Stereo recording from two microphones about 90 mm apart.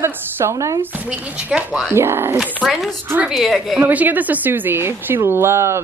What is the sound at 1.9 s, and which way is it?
Speech, 25° right (ahead or behind).